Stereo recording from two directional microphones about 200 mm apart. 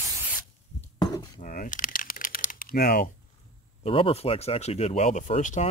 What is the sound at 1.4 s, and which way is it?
Crumpling, 40° left (ahead or behind).